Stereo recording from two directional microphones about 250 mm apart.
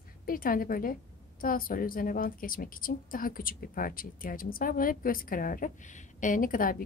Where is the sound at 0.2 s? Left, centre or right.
Left.